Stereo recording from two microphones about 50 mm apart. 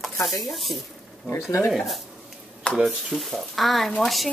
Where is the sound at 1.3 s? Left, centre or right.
Left.